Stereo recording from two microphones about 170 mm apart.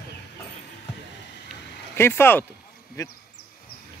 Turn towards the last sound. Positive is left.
turn(degrees=65)  # may be behind; listen again after turning